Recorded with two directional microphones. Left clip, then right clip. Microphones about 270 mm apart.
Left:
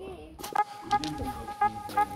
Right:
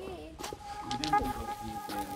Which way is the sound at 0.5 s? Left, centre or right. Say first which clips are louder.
Left 12 dB; left.